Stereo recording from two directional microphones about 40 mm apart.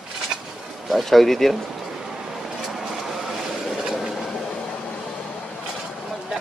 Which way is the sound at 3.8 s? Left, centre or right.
Centre.